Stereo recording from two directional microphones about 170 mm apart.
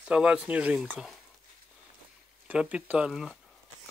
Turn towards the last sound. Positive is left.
turn(degrees=-5)  # may be behind; listen again after turning